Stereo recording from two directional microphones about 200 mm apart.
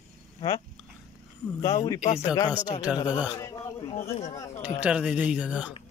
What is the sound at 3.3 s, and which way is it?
Speech, 15° left (ahead or behind).